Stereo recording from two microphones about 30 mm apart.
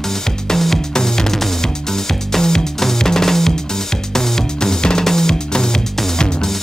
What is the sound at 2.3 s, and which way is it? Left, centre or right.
Music, centre.